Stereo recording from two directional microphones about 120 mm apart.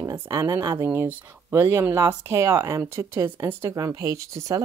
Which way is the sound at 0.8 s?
15° right (ahead or behind).